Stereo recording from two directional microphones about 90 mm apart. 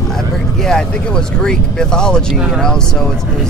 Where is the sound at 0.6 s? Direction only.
10° left (ahead or behind).